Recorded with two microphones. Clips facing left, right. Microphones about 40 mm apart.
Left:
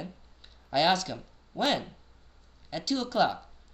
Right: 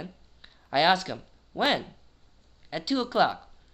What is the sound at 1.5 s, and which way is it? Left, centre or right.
Speech, right.